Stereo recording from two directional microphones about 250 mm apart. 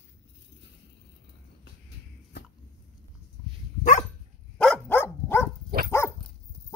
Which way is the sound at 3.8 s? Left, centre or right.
Left.